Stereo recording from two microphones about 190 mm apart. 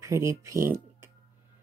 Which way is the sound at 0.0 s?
15° right (ahead or behind).